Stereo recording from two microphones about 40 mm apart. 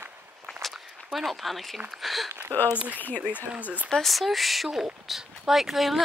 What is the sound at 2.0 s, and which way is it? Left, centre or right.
Speech, centre.